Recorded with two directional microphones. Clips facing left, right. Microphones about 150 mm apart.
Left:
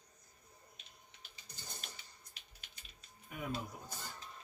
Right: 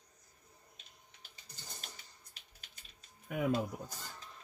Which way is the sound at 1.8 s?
40° right (ahead or behind).